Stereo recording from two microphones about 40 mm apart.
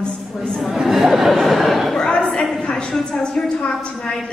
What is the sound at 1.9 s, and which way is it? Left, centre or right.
A woman's voice, centre.